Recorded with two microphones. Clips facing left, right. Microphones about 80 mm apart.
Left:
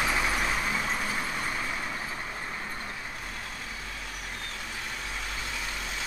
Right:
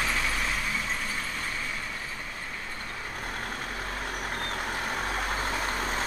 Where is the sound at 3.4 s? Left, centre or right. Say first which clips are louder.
Right 5 dB; right.